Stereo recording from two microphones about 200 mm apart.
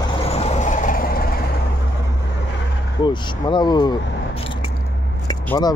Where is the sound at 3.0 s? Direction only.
20° left (ahead or behind).